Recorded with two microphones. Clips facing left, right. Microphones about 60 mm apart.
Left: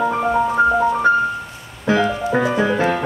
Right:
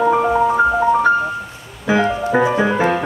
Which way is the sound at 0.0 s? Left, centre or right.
Centre.